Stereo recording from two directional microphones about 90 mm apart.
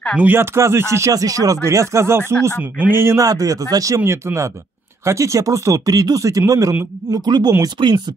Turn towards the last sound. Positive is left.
turn(degrees=-90)